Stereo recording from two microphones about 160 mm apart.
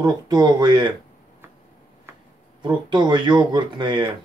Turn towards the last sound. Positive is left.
turn(degrees=-30)  # may be behind; listen again after turning